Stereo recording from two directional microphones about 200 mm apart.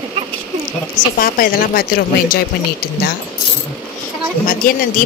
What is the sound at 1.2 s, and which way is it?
A woman's voice, 45° left (ahead or behind).